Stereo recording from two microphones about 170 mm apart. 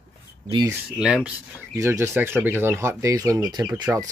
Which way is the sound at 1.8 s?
15° right (ahead or behind).